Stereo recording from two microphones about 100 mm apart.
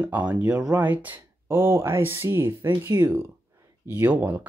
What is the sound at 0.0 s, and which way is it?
Speech, 15° right (ahead or behind).